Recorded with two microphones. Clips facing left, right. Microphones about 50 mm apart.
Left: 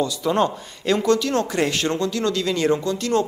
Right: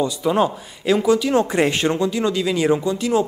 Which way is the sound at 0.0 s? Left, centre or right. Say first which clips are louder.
Right 2 dB; centre.